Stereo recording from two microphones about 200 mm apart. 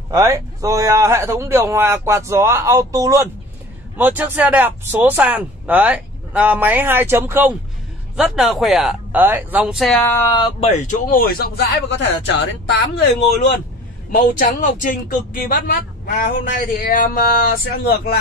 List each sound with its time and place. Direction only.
0.1 s speech: 15° right (ahead or behind); by 10.1 s centre (ahead or behind)
10.1 s speech: 25° left (ahead or behind)
10.9 s speech: 45° left (ahead or behind); by 12.8 s 60° left (ahead or behind)
14.1 s speech: 40° left (ahead or behind)